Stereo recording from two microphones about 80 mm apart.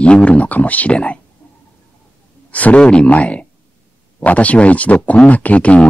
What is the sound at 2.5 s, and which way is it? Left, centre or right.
Speech, centre.